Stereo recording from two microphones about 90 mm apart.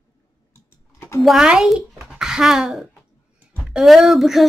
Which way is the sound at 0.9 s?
25° left (ahead or behind).